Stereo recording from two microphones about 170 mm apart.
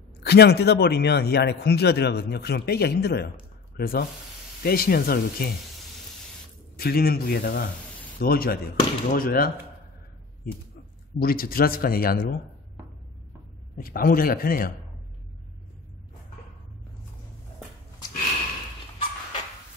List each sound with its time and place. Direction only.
0.2 s speech: 70° left (ahead or behind)
6.8 s speech: 65° left (ahead or behind)
11.1 s speech: 60° left (ahead or behind)
13.7 s speech: 55° left (ahead or behind)